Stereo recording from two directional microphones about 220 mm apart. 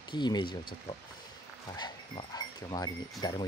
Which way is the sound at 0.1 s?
20° left (ahead or behind).